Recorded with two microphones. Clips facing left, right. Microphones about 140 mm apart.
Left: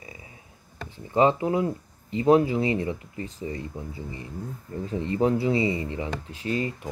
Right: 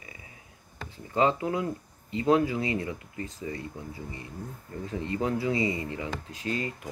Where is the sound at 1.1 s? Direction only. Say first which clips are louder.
Left 4 dB; 30° left (ahead or behind).